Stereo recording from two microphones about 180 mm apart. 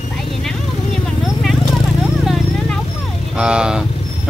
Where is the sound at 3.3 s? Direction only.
5° right (ahead or behind).